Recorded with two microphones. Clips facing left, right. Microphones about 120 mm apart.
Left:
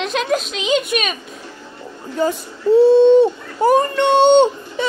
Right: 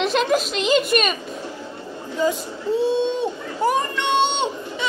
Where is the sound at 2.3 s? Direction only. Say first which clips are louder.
Left 7 dB; 5° right (ahead or behind).